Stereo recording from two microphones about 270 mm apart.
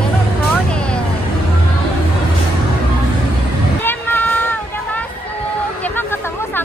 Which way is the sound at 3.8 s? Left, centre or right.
Centre.